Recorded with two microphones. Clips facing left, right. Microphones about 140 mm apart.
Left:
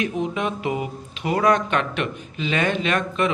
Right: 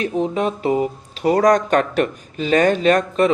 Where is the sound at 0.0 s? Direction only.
35° right (ahead or behind).